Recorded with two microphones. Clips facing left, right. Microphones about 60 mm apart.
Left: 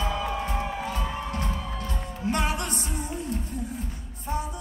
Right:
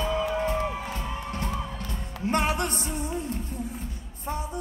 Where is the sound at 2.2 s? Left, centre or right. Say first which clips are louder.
Right 2 dB; right.